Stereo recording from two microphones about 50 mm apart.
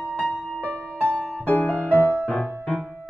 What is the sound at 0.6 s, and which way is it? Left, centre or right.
Music, left.